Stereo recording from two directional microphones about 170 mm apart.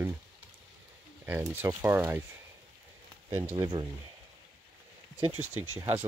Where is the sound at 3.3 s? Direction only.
15° right (ahead or behind).